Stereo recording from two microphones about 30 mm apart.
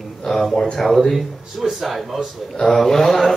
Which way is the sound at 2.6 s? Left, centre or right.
Centre.